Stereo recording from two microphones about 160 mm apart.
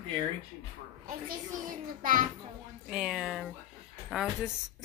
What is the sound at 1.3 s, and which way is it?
Speech, 60° right (ahead or behind).